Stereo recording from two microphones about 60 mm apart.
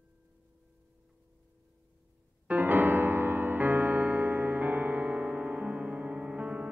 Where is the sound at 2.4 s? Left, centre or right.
Right.